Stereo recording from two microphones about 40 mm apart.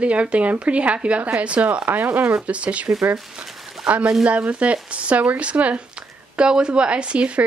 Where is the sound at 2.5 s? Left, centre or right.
Right.